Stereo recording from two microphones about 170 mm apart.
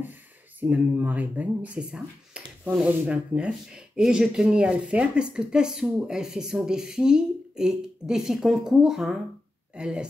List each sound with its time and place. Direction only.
0.6 s speech: 10° right (ahead or behind)